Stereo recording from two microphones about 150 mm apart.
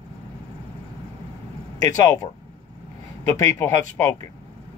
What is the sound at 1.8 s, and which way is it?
Speech, 25° left (ahead or behind).